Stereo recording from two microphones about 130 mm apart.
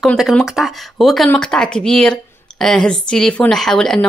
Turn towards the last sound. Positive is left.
turn(degrees=5)  # may be behind; listen again after turning